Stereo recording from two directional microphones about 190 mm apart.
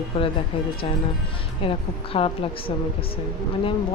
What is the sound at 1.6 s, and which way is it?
Speech, 30° left (ahead or behind).